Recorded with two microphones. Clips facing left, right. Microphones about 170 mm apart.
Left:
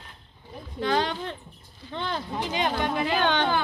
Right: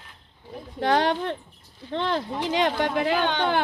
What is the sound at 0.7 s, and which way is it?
Speech, 70° right (ahead or behind).